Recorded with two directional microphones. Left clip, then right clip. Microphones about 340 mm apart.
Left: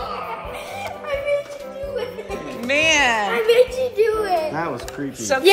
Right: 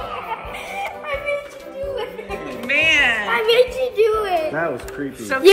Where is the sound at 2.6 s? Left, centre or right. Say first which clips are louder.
Right 1 dB; centre.